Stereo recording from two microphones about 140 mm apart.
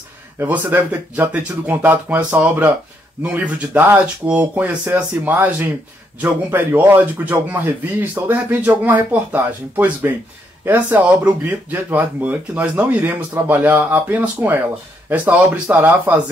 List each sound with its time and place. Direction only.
0.4 s speech: 15° right (ahead or behind)